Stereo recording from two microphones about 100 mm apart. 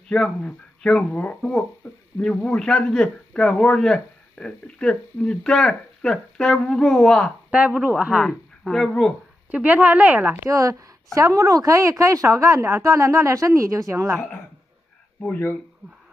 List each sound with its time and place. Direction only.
0.1 s a man's voice: 10° left (ahead or behind)
7.5 s speech: 10° right (ahead or behind)
8.2 s speech: centre (ahead or behind)
9.5 s speech: 15° right (ahead or behind)
10.4 s speech: 35° right (ahead or behind)
15.1 s speech: 20° left (ahead or behind)